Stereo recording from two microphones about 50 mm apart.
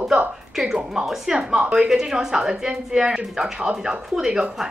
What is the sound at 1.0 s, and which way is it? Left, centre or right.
Speech, centre.